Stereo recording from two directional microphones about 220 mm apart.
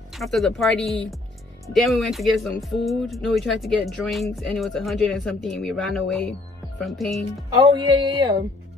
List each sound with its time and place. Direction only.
0.1 s speech: centre (ahead or behind)
8.2 s speech: 15° right (ahead or behind)